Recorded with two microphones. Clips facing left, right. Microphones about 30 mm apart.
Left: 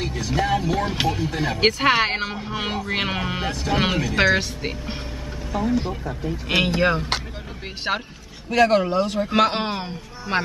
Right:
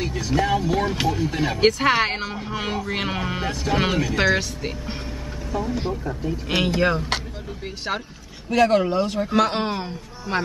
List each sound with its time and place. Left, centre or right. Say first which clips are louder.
0.0 s a sound: right 1 dB; centre
0.8 s speech: even; centre
1.6 s speech: even; centre
7.9 s speech: left 3 dB; left
8.5 s speech: even; centre